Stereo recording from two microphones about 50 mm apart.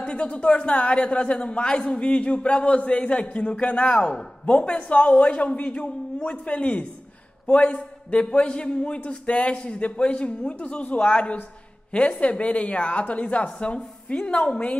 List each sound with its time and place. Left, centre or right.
0.0 s a man's voice: left